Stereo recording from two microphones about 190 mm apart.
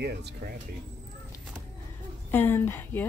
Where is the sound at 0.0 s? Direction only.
60° right (ahead or behind).